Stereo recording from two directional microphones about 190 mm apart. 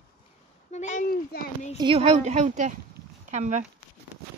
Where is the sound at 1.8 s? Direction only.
30° right (ahead or behind).